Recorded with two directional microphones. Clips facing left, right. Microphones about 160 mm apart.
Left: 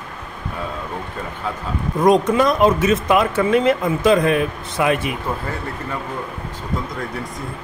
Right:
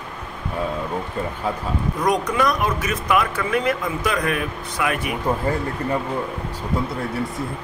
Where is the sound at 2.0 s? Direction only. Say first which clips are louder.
Left 6 dB; 25° left (ahead or behind).